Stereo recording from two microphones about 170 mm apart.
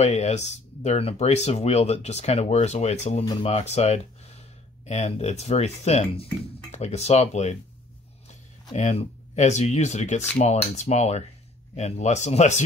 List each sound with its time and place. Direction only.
0.0 s speech: 40° left (ahead or behind)
8.7 s speech: 40° left (ahead or behind)